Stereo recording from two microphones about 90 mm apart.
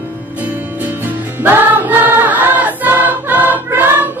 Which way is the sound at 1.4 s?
25° right (ahead or behind).